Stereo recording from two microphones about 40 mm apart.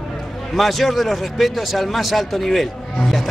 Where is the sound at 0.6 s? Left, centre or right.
Centre.